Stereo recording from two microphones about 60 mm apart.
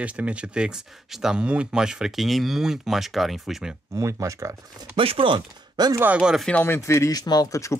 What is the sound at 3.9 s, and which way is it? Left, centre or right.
Speech, right.